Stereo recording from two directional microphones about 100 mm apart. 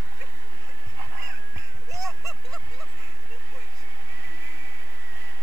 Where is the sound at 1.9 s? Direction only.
35° right (ahead or behind).